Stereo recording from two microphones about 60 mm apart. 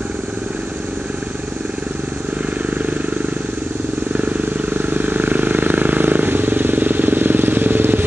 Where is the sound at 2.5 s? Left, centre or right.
Right.